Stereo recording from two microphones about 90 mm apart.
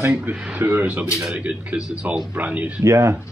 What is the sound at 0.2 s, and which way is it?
Speech, 15° right (ahead or behind).